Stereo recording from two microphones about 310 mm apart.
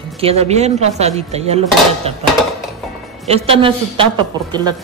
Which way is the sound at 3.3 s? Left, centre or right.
Centre.